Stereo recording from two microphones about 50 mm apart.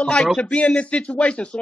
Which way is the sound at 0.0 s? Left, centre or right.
Left.